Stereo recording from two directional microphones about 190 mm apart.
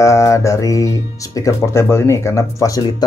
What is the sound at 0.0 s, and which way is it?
Speech, 15° left (ahead or behind).